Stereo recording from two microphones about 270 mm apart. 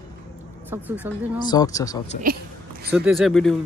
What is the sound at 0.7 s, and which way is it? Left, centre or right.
Speech, centre.